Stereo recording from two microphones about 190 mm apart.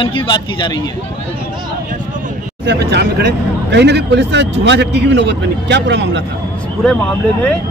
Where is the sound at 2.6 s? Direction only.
60° right (ahead or behind).